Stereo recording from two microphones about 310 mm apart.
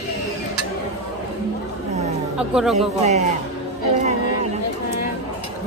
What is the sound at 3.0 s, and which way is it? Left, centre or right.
Speech, right.